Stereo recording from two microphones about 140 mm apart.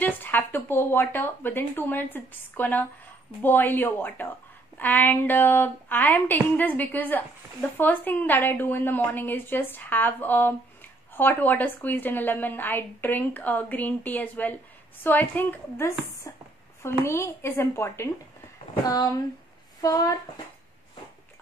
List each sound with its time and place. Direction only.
0.0 s a woman's voice: 15° left (ahead or behind)
16.3 s a woman's voice: 25° left (ahead or behind)